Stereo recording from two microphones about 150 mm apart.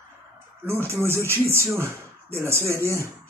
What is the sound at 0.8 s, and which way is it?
Speech, 15° right (ahead or behind).